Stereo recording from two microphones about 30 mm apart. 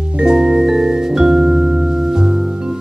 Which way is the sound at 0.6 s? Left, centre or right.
Centre.